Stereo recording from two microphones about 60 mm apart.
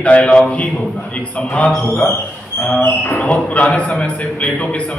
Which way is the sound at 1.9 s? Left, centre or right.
Left.